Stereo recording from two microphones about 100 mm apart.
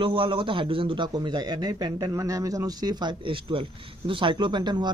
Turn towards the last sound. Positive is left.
turn(degrees=-50)  # may be behind; listen again after turning